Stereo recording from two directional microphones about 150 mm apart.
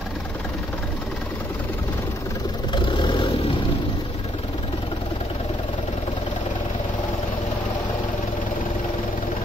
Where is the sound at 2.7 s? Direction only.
30° left (ahead or behind).